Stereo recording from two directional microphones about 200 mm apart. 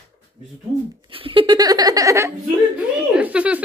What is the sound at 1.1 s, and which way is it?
A woman's voice, 25° right (ahead or behind).